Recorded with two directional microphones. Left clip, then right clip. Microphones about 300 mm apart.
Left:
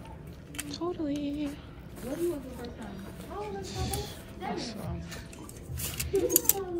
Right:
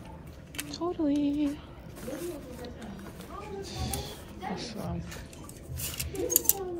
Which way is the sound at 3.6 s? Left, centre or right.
Centre.